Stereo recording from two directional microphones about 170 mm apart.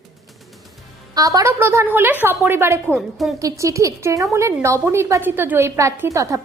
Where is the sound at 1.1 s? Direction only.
20° right (ahead or behind).